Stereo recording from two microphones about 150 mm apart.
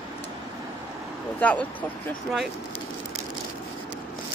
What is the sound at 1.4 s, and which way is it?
Speech, 10° left (ahead or behind).